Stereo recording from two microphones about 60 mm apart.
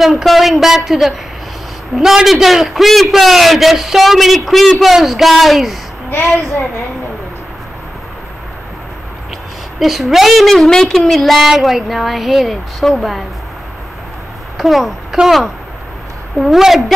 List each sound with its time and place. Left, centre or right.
0.0 s a man's voice: centre
6.0 s a woman's voice: left
9.8 s a man's voice: centre
14.6 s a man's voice: centre
16.3 s a man's voice: centre